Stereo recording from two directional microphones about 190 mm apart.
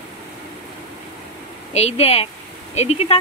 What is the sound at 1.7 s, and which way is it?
Speech, 35° left (ahead or behind).